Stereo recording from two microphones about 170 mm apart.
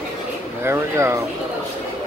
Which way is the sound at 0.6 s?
15° right (ahead or behind).